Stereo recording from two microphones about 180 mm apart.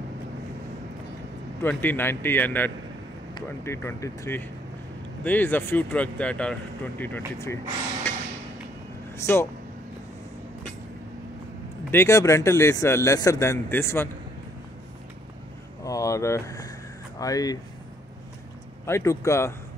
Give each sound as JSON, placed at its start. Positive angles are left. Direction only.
{"t": 1.6, "sound": "speech", "side_deg": 10}
{"t": 9.1, "sound": "speech", "side_deg": 15}
{"t": 11.9, "sound": "speech", "side_deg": 15}
{"t": 15.8, "sound": "a sound", "side_deg": 20}
{"t": 17.2, "sound": "speech", "side_deg": 20}
{"t": 18.9, "sound": "speech", "side_deg": 15}